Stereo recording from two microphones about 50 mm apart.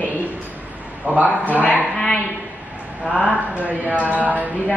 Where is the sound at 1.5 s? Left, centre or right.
Left.